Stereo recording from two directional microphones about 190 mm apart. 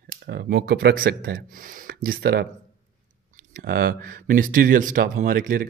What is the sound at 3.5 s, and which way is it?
Speech, 50° right (ahead or behind).